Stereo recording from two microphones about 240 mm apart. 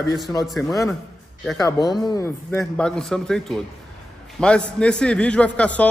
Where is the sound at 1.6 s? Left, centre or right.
Centre.